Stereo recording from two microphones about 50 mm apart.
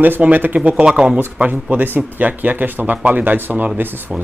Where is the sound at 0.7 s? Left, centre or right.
Centre.